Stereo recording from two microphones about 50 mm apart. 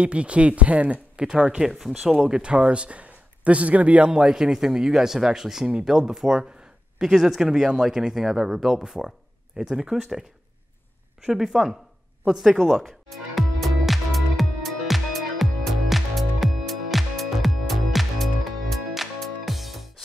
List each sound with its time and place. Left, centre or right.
0.0 s speech: right
1.7 s speech: centre
11.2 s speech: centre
12.6 s music: centre